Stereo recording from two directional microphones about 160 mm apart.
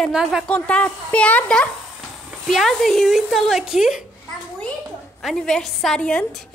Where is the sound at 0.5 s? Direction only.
5° left (ahead or behind).